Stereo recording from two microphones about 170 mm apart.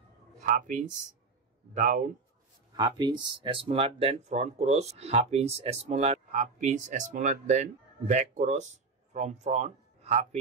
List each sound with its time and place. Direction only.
0.4 s speech: 50° right (ahead or behind)
2.7 s speech: 25° right (ahead or behind)